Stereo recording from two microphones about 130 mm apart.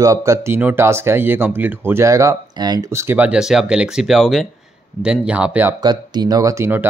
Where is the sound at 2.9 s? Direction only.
20° right (ahead or behind).